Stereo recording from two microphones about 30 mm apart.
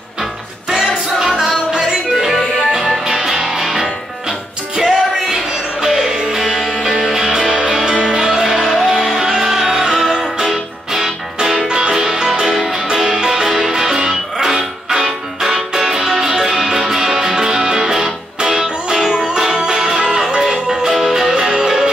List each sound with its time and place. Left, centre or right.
0.7 s music: right
2.1 s music: centre
11.4 s music: right
11.9 s music: centre